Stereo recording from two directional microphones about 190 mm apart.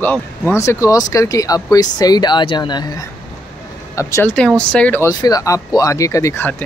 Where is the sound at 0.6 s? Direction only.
15° left (ahead or behind).